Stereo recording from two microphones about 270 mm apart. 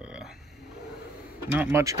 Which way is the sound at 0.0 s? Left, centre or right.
Centre.